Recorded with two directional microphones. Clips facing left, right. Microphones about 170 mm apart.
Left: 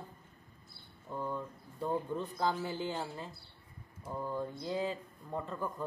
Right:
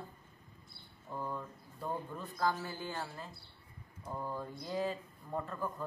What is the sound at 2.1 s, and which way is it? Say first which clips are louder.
Speech: left 2 dB; 20° left (ahead or behind).